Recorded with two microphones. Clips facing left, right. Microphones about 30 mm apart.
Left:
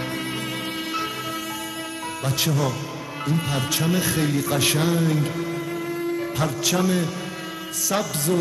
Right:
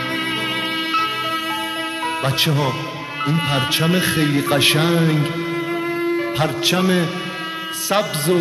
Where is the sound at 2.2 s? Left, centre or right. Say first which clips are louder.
Right 3 dB; right.